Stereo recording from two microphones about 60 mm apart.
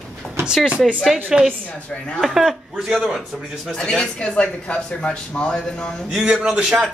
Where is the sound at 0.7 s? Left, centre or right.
Centre.